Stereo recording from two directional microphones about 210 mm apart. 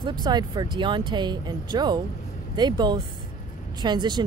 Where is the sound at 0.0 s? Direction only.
20° right (ahead or behind).